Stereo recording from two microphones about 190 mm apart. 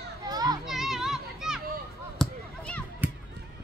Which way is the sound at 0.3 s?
20° right (ahead or behind).